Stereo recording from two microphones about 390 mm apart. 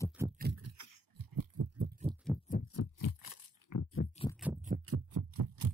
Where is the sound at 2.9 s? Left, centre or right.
Left.